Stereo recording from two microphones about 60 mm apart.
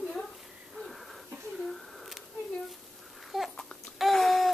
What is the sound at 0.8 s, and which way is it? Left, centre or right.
Wheeze, centre.